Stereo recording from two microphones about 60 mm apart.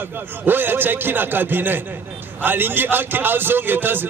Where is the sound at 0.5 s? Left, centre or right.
Right.